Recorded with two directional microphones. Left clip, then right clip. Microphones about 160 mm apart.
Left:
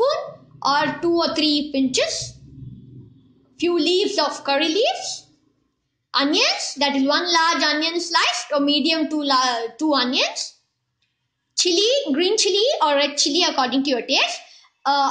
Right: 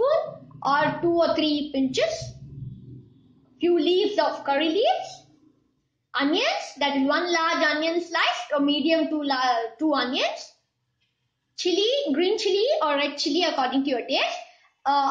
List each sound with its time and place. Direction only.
0.7 s a child's voice: 60° left (ahead or behind)
3.5 s a child's voice: 65° left (ahead or behind)
6.1 s a child's voice: 65° left (ahead or behind)
11.5 s a woman's voice: 60° left (ahead or behind)